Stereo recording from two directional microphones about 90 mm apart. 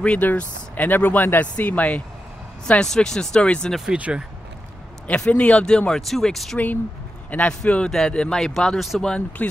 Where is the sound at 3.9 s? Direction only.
15° right (ahead or behind).